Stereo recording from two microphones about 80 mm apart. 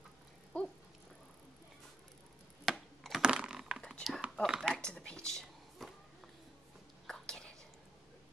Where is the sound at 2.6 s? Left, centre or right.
Centre.